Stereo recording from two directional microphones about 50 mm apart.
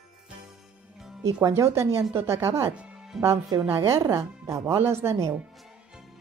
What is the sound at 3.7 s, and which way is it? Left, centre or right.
Speech, right.